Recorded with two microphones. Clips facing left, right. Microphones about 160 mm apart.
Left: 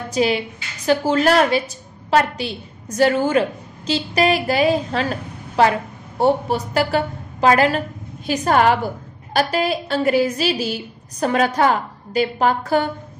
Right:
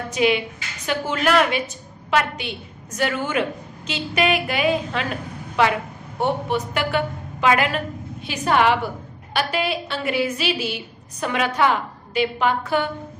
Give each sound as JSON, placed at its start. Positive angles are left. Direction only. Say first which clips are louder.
{"t": 0.1, "sound": "a woman's voice", "louder": "left 1 dB", "side_deg": 35}